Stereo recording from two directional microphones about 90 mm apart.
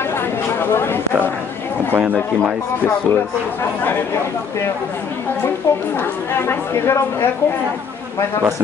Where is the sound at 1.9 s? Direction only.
15° right (ahead or behind).